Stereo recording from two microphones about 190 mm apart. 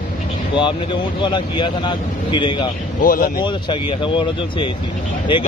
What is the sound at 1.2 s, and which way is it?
Speech, 25° left (ahead or behind).